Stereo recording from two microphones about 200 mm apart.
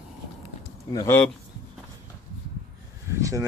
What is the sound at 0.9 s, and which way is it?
Speech, 10° left (ahead or behind).